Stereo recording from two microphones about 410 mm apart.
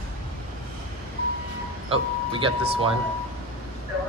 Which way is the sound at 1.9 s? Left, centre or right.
Centre.